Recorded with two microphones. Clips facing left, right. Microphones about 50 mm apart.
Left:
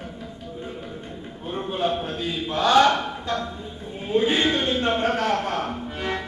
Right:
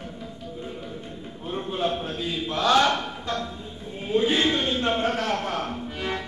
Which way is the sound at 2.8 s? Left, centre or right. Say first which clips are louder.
Left 3 dB; centre.